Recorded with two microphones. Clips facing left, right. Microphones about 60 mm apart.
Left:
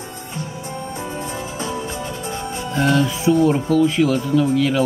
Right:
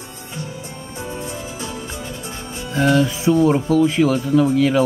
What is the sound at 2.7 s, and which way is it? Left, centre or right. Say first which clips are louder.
Speech: right 2 dB; centre.